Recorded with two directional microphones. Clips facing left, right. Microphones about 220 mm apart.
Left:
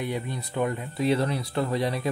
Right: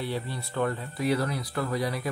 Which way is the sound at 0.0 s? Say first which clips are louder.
Left 2 dB; 15° left (ahead or behind).